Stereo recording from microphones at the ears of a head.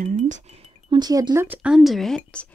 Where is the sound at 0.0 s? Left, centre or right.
Right.